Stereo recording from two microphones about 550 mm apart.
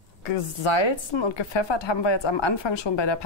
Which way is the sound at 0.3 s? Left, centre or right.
Left.